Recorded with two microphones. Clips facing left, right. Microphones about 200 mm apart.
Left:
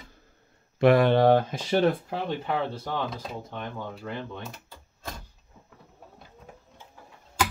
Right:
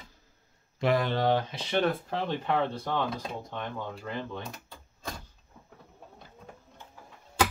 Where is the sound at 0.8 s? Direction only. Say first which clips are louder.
Left 7 dB; 60° left (ahead or behind); by 1.8 s 45° left (ahead or behind).